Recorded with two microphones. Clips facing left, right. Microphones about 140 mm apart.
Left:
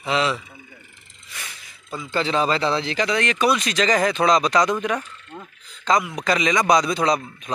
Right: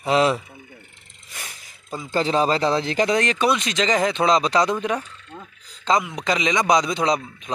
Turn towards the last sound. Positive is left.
turn(degrees=-20)  # may be behind; listen again after turning